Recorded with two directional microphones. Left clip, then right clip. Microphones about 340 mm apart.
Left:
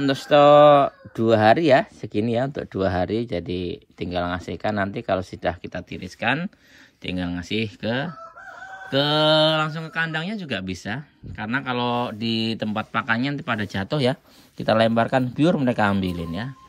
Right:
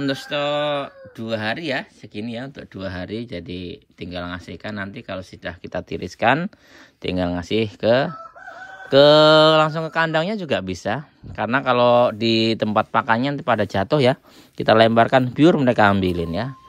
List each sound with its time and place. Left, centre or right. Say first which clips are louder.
0.0 s speech: left 8 dB; centre